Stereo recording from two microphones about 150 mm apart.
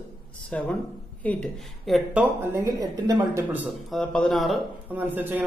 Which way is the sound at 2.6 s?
25° right (ahead or behind).